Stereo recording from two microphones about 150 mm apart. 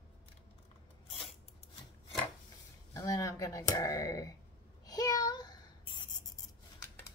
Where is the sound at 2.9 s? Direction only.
25° left (ahead or behind).